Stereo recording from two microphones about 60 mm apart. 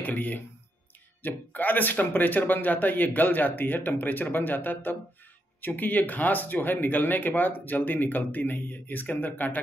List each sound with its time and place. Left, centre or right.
0.0 s speech: left